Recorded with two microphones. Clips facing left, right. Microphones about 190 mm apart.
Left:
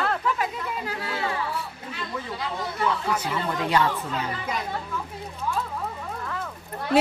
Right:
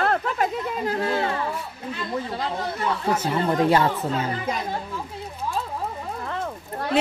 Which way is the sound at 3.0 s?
45° right (ahead or behind).